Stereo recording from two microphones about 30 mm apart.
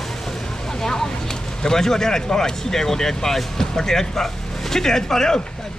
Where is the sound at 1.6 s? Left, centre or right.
Centre.